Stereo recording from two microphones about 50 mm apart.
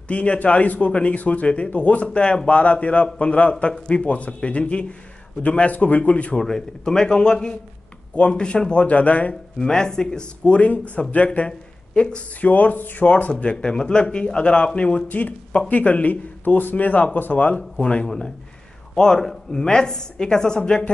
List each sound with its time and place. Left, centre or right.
0.1 s speech: left
2.0 s speech: centre
6.3 s a woman's voice: centre
8.8 s speech: left
9.3 s a woman's voice: centre; by 11.2 s left
11.2 s speech: centre
12.4 s speech: left
13.1 s speech: left
15.0 s speech: left
18.0 s a woman's voice: centre